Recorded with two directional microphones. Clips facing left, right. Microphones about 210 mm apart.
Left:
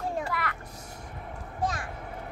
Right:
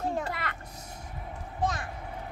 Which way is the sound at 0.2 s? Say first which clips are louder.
Left 2 dB; 25° right (ahead or behind).